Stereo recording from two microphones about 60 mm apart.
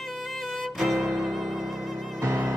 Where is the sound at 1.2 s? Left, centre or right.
Centre.